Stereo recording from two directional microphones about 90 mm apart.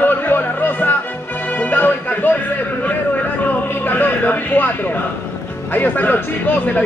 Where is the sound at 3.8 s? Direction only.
20° left (ahead or behind).